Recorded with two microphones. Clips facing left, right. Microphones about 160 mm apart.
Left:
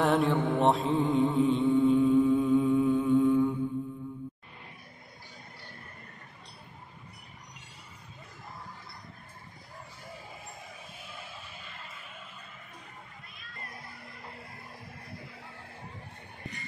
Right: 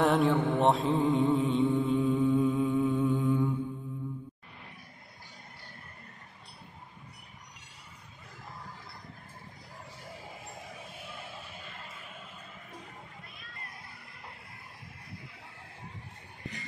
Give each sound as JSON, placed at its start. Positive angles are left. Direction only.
{"t": 0.0, "sound": "mantra", "side_deg": 0}